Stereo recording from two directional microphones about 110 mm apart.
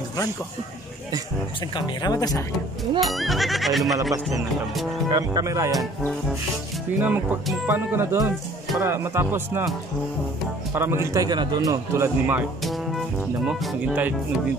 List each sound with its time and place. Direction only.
1.8 s speech: 35° left (ahead or behind)
3.2 s speech: centre (ahead or behind)
4.1 s speech: 30° right (ahead or behind)
7.0 s speech: 15° right (ahead or behind)
10.7 s speech: 25° right (ahead or behind)
11.2 s speech: 40° right (ahead or behind)
13.5 s speech: 10° right (ahead or behind)